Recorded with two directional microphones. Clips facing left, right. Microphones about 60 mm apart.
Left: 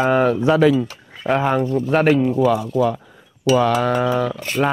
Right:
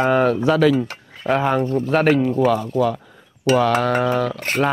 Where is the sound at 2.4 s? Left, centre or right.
Right.